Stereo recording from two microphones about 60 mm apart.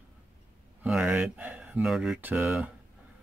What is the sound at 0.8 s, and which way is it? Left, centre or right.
Speech, centre.